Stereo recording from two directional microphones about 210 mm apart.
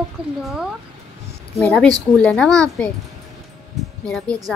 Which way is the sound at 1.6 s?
Centre (ahead or behind).